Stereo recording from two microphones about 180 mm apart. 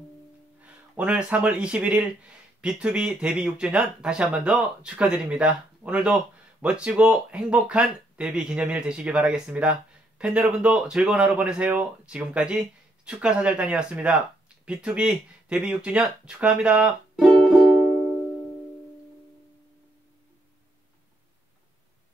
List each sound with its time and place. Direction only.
0.6 s speech: 10° right (ahead or behind)